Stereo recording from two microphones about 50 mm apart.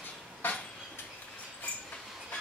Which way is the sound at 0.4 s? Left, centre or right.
Left.